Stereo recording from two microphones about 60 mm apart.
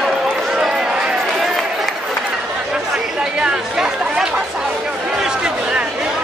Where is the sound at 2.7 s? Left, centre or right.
Centre.